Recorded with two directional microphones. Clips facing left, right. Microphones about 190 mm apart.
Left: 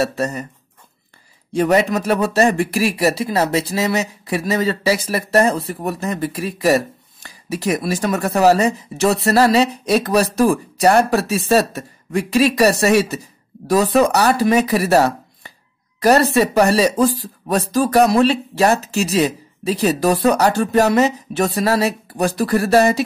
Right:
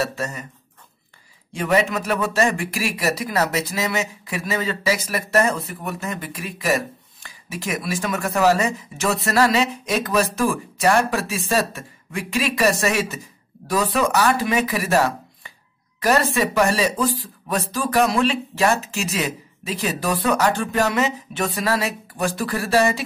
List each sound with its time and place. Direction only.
0.0 s speech: 40° left (ahead or behind)
1.5 s speech: 40° left (ahead or behind)